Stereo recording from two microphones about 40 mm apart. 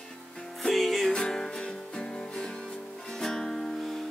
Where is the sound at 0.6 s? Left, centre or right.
Centre.